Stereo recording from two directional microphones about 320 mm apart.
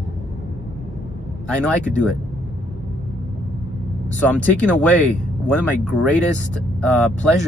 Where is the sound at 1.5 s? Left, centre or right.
Centre.